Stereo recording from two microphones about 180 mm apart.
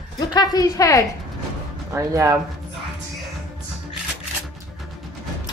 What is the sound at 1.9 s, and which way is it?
Speech, 15° right (ahead or behind).